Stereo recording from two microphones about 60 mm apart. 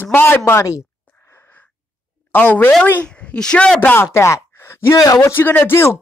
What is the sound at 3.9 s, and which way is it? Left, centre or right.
Speech, left.